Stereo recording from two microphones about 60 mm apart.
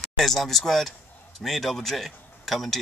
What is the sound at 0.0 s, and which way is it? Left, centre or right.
Speech, centre.